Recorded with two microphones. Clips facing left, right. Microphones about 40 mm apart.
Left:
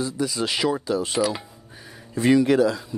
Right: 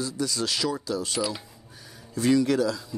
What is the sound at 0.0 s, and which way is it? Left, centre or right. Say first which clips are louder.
Speech: left 3 dB; left.